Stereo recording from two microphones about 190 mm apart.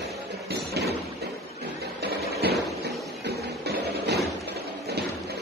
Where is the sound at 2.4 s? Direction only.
55° right (ahead or behind).